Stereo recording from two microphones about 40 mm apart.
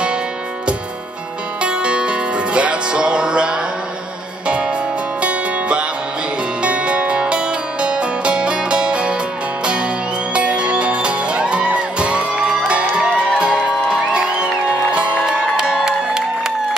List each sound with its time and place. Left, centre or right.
1.6 s music: right
10.3 s music: right
14.7 s music: right
15.5 s music: centre